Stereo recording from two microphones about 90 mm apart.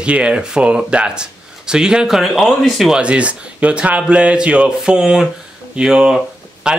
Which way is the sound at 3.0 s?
15° right (ahead or behind).